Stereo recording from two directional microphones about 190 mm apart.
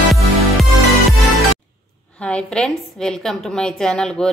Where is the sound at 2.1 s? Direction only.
5° left (ahead or behind).